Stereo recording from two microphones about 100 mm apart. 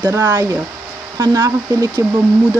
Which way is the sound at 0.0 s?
40° right (ahead or behind).